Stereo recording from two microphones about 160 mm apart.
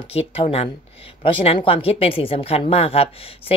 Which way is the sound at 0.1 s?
40° left (ahead or behind).